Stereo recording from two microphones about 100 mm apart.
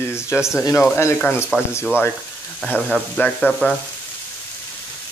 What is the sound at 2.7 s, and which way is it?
Speech, 10° left (ahead or behind).